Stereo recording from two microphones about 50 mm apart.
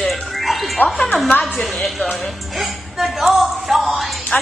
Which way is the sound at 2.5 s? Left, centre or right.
Centre.